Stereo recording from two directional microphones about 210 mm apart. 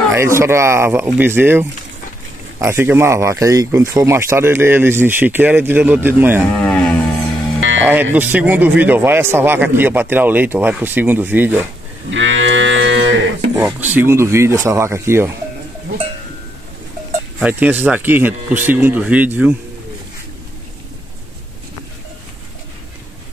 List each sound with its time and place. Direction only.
0.1 s speech: 10° right (ahead or behind)
6.5 s speech: 5° left (ahead or behind)
7.8 s speech: 10° right (ahead or behind)
12.1 s cattle: 60° right (ahead or behind)
13.6 s speech: 10° right (ahead or behind)
17.4 s speech: 5° right (ahead or behind)